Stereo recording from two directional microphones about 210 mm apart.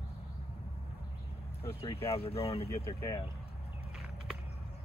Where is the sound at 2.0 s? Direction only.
30° left (ahead or behind).